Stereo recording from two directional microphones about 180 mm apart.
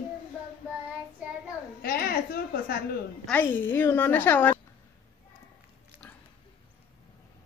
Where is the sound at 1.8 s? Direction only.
55° left (ahead or behind).